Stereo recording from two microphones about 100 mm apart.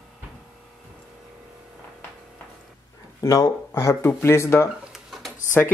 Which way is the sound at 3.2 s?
35° left (ahead or behind).